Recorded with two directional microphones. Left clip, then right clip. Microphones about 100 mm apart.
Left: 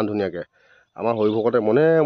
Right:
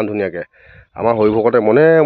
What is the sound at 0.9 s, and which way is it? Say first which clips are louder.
A man's voice: right 7 dB; 25° right (ahead or behind).